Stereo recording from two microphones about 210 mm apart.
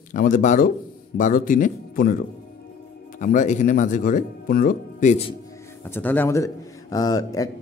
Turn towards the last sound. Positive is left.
turn(degrees=15)  # may be behind; listen again after turning